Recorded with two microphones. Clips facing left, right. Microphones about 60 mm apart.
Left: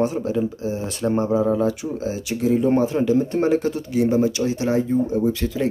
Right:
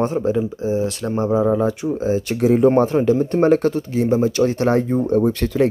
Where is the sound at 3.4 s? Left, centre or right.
Right.